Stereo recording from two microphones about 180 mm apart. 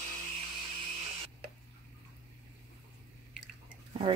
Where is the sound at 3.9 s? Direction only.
30° right (ahead or behind).